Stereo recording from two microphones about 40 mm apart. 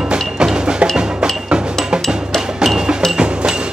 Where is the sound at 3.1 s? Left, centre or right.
Right.